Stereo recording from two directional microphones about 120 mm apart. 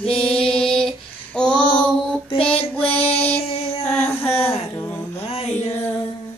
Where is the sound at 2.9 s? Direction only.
60° left (ahead or behind).